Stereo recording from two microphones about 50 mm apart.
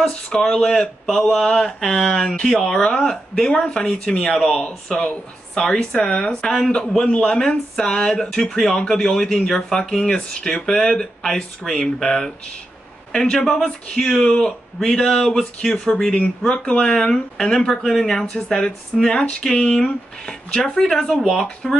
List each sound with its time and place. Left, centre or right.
0.0 s speech: centre
6.4 s speech: centre